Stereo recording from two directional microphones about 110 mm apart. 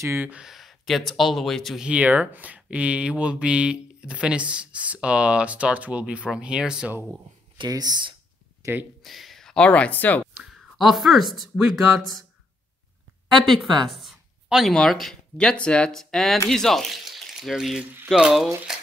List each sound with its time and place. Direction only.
0.0 s speech: 15° right (ahead or behind); by 1.9 s centre (ahead or behind)
1.9 s speech: 15° right (ahead or behind)
7.5 s speech: 40° right (ahead or behind)
9.0 s speech: centre (ahead or behind)
10.4 s speech: centre (ahead or behind)
13.7 s speech: centre (ahead or behind)
18.7 s a sound: 5° right (ahead or behind)